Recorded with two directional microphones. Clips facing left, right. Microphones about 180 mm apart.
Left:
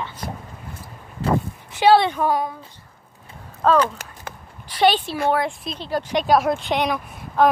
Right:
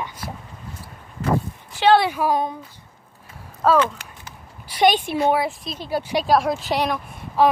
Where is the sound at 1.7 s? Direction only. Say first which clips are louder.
Left 1 dB; 10° left (ahead or behind).